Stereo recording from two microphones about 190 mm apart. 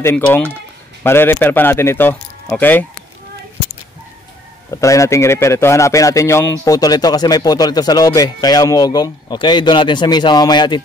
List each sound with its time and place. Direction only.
0.0 s speech: 10° left (ahead or behind)
4.6 s speech: 15° left (ahead or behind)